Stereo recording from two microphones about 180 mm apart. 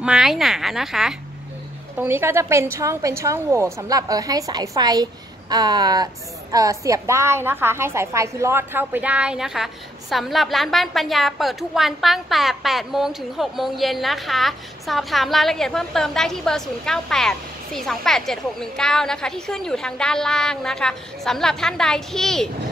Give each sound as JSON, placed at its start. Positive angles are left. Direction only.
{"t": 0.0, "sound": "a woman's voice", "side_deg": -5}
{"t": 2.0, "sound": "a woman's voice", "side_deg": -15}